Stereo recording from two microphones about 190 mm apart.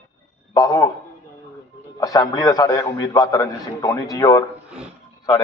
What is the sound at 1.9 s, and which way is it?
A man's voice, 20° left (ahead or behind).